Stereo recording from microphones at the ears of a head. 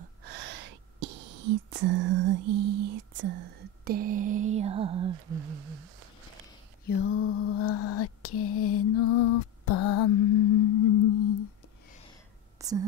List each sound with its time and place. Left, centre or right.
0.0 s speech: right
6.9 s lullaby: left